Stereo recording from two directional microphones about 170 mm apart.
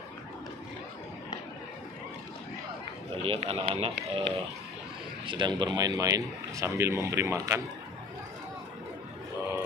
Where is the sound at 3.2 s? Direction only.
35° right (ahead or behind).